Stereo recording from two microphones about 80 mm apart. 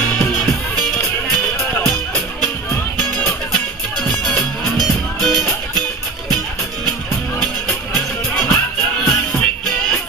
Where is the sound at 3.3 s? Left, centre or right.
Centre.